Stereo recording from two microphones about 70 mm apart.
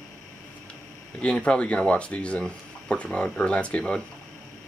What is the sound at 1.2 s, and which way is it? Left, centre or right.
Speech, centre.